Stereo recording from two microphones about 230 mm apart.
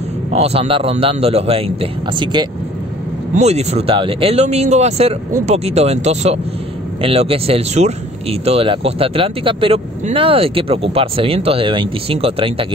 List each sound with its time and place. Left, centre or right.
0.3 s speech: right